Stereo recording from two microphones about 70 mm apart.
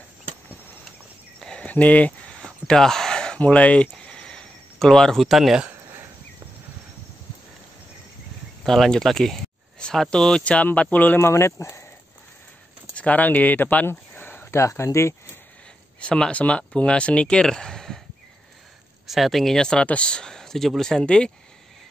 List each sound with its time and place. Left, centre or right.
1.6 s speech: left
2.4 s a sound: centre
3.3 s speech: centre
3.9 s a sound: centre
8.6 s speech: centre; by 11.1 s left
11.1 s speech: left
12.9 s speech: left
14.6 s speech: left
16.0 s speech: centre
19.0 s speech: centre